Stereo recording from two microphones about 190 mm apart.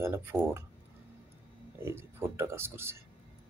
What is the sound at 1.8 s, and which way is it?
Speech, 15° right (ahead or behind).